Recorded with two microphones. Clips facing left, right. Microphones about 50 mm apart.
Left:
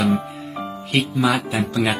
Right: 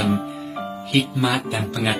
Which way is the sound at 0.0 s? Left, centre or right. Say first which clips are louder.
Left 2 dB; centre.